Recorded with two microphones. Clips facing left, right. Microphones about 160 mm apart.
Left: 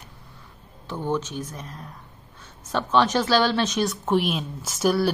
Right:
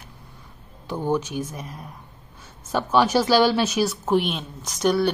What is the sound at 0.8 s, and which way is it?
Speech, 10° right (ahead or behind).